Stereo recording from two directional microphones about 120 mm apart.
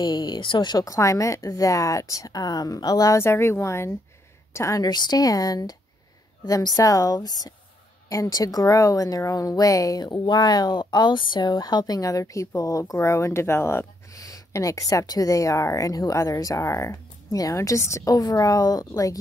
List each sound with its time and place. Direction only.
0.0 s a woman's voice: 35° left (ahead or behind)